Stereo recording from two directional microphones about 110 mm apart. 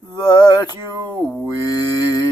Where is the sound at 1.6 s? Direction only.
35° left (ahead or behind).